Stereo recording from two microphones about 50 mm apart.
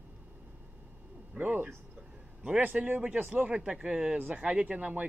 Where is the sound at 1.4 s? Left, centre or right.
Right.